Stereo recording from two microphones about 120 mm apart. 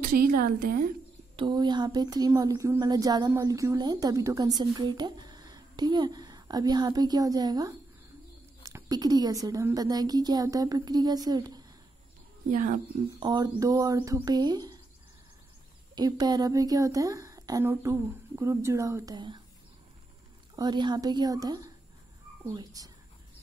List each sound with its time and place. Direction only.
1.3 s speech: 40° right (ahead or behind)
12.4 s speech: 90° right
13.2 s speech: 35° right (ahead or behind)
15.9 s a woman's voice: 35° right (ahead or behind)
19.0 s speech: 40° right (ahead or behind)
20.5 s speech: 40° right (ahead or behind)